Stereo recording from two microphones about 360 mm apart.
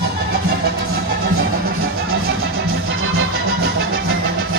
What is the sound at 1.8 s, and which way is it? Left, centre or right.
Music, right.